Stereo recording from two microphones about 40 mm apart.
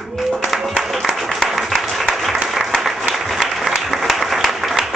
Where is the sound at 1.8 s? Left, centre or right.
Centre.